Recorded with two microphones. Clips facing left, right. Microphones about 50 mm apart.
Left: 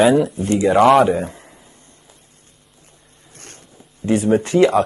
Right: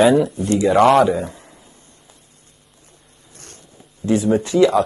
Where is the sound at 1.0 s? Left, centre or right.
Left.